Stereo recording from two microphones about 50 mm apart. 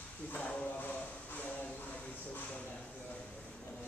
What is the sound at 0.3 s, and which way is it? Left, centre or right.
Speech, left.